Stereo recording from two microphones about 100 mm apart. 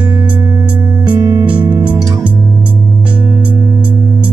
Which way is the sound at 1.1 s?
45° right (ahead or behind).